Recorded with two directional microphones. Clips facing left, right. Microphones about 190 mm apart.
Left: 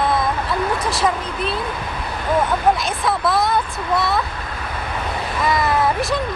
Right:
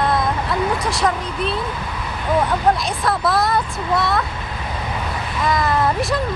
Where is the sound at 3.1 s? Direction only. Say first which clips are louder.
Even; centre (ahead or behind).